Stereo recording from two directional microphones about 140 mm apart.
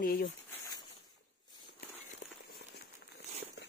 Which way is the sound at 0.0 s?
90° left.